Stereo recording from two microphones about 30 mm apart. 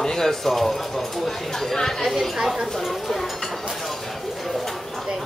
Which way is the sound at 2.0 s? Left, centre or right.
Centre.